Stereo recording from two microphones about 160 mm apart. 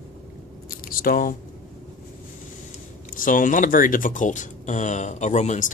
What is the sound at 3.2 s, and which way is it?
Speech, 55° left (ahead or behind).